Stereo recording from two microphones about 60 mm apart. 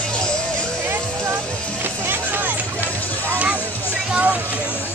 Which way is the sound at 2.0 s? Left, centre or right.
Right.